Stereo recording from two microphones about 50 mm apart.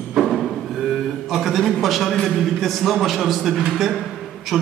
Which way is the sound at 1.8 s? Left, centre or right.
Centre.